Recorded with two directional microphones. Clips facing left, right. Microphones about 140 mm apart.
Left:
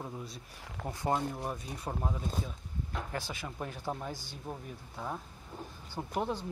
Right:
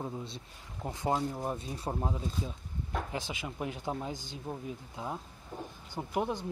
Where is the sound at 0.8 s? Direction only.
20° right (ahead or behind).